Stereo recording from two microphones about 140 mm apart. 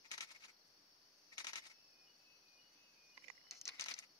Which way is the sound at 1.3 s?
25° left (ahead or behind).